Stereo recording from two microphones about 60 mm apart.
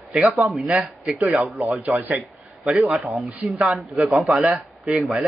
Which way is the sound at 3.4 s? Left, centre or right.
Centre.